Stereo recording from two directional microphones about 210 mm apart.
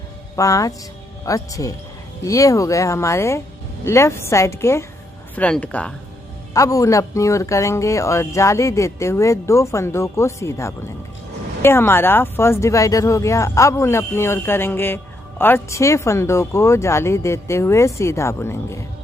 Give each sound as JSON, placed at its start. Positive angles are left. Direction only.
{"t": 0.4, "sound": "speech", "side_deg": 15}